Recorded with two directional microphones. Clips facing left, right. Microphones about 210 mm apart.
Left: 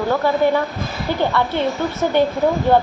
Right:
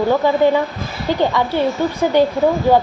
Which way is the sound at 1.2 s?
10° right (ahead or behind).